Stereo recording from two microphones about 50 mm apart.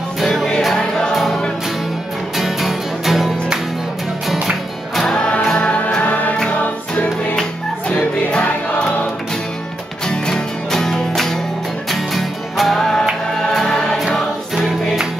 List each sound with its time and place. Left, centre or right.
0.2 s music: centre
4.9 s music: centre
6.0 s music: left
7.9 s music: centre
10.0 s music: centre